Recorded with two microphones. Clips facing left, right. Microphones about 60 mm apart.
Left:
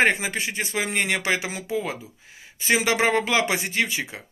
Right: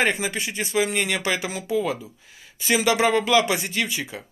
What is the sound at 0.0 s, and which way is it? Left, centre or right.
Speech, left.